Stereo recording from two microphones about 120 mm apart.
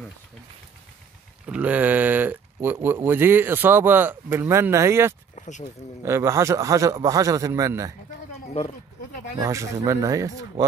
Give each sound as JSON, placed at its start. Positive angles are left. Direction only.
{"t": 1.4, "sound": "speech", "side_deg": -10}
{"t": 5.3, "sound": "a sound", "side_deg": 85}
{"t": 6.0, "sound": "speech", "side_deg": -25}
{"t": 8.6, "sound": "speech", "side_deg": 65}
{"t": 9.4, "sound": "speech", "side_deg": -25}